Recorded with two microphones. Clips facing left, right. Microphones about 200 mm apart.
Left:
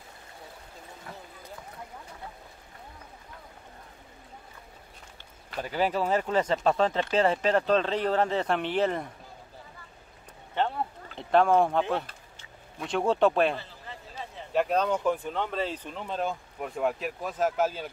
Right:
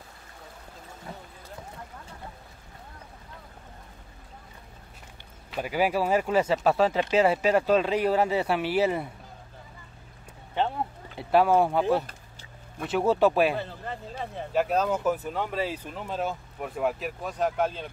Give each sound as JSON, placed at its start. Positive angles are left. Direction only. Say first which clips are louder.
{"t": 5.6, "sound": "speech", "louder": "right 2 dB", "side_deg": -10}
{"t": 11.1, "sound": "speech", "louder": "right 1 dB", "side_deg": -5}
{"t": 13.6, "sound": "a sound", "louder": "right 9 dB", "side_deg": -55}
{"t": 14.5, "sound": "speech", "louder": "even", "side_deg": -5}